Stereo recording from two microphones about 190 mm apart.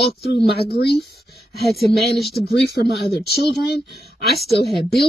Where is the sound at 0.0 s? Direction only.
55° left (ahead or behind).